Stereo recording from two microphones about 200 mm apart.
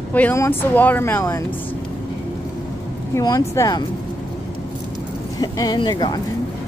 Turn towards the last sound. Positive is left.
turn(degrees=20)  # may be behind; listen again after turning